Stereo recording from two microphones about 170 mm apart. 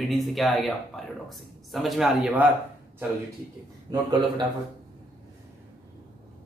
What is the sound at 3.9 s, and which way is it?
Speech, 25° right (ahead or behind).